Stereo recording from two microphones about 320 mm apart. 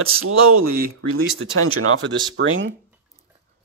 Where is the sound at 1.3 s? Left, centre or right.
Right.